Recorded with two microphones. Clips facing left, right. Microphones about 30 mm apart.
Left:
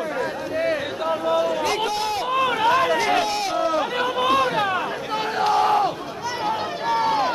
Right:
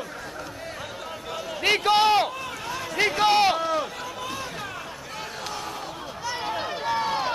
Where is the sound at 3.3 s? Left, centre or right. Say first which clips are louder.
Right 6 dB; right.